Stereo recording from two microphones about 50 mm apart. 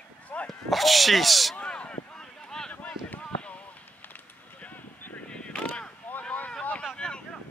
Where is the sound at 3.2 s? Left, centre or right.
Left.